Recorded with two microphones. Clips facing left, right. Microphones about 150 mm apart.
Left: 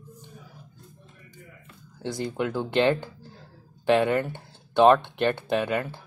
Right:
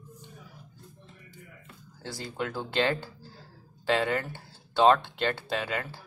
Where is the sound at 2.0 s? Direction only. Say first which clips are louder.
Left 6 dB; 20° left (ahead or behind).